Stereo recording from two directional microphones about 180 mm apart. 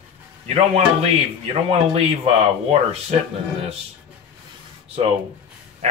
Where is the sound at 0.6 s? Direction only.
35° right (ahead or behind).